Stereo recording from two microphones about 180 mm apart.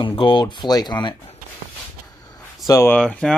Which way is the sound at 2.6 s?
15° left (ahead or behind).